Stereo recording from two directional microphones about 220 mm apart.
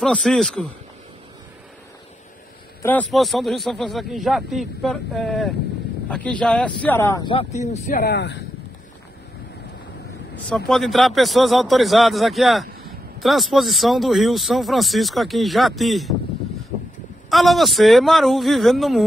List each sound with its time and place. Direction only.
0.0 s speech: 5° left (ahead or behind)
2.8 s speech: 5° left (ahead or behind)
7.3 s speech: 30° left (ahead or behind); by 8.4 s 50° left (ahead or behind)
10.5 s speech: centre (ahead or behind)
17.3 s speech: centre (ahead or behind)